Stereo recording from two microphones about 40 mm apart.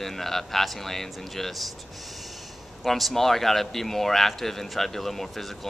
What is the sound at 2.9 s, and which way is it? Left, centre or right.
A man's voice, centre.